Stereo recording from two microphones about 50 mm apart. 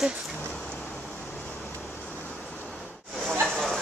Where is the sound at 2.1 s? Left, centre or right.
Left.